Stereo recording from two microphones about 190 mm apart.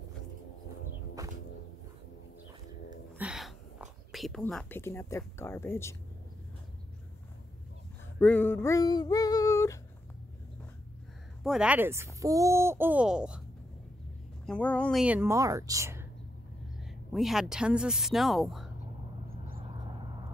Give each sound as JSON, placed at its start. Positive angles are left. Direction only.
{"t": 1.2, "sound": "whip", "side_deg": -20}
{"t": 3.2, "sound": "whispering", "side_deg": -5}
{"t": 8.2, "sound": "a sound", "side_deg": 10}
{"t": 11.4, "sound": "speech", "side_deg": -5}
{"t": 14.4, "sound": "speech", "side_deg": 5}
{"t": 16.8, "sound": "speech", "side_deg": 0}
{"t": 19.9, "sound": "vehicle", "side_deg": -25}